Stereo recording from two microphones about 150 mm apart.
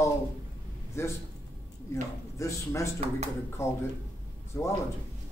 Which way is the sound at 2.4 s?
20° left (ahead or behind).